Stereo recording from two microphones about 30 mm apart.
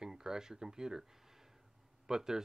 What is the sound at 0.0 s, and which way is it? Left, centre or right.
Speech, centre.